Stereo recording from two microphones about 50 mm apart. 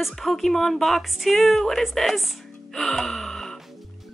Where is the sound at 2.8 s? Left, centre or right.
Centre.